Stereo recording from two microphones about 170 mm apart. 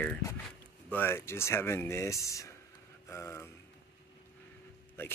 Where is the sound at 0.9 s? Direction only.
15° left (ahead or behind).